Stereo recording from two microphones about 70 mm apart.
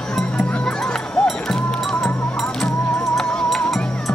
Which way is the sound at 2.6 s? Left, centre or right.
Centre.